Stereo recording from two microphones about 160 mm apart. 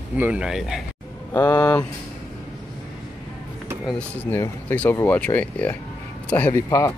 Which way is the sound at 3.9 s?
10° left (ahead or behind).